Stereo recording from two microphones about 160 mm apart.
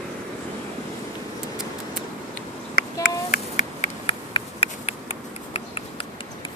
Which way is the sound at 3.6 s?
45° left (ahead or behind).